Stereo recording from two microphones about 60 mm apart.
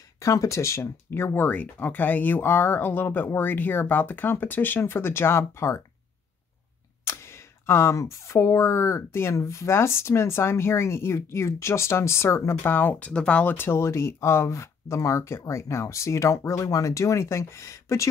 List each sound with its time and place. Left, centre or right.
0.2 s speech: left
1.5 s speech: left
7.1 s speech: left
13.0 s speech: centre
13.6 s speech: left
16.6 s speech: left